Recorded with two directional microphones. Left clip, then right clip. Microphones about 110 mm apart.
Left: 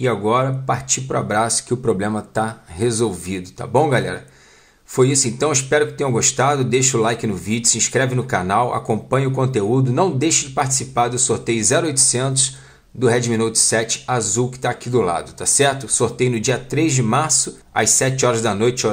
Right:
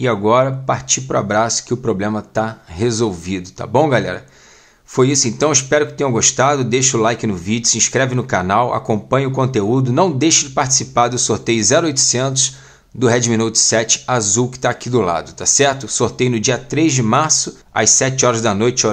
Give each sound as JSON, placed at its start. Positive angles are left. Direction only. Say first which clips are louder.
{"t": 0.0, "sound": "speech", "louder": "right 4 dB", "side_deg": -20}